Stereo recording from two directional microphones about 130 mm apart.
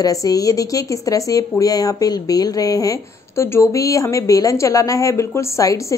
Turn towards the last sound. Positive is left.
turn(degrees=25)  # may be behind; listen again after turning